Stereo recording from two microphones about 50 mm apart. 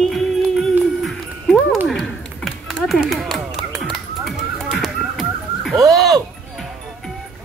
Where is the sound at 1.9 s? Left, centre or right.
Centre.